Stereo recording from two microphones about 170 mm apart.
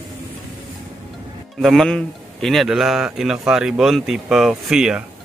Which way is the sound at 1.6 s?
Centre (ahead or behind).